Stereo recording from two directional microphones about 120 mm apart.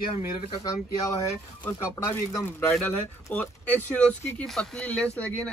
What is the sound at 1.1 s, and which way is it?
Speech, 30° left (ahead or behind).